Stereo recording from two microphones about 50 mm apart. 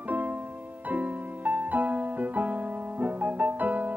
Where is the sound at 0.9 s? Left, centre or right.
Right.